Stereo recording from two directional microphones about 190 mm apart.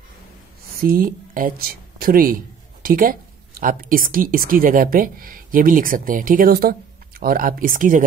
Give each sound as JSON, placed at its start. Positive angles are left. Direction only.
{"t": 0.8, "sound": "speech", "side_deg": -50}